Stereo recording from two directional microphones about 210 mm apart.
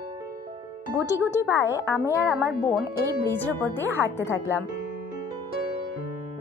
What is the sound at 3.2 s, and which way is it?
Speech, 10° left (ahead or behind).